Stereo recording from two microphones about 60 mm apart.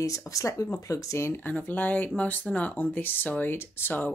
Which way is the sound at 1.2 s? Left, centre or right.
Left.